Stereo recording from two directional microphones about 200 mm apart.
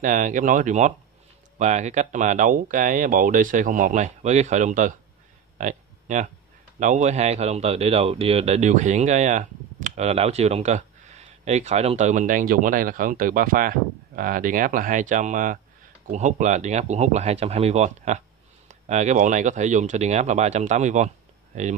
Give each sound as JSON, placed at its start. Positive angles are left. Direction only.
{"t": 0.0, "sound": "speech", "side_deg": -40}
{"t": 5.6, "sound": "a sound", "side_deg": -40}
{"t": 6.8, "sound": "speech", "side_deg": -35}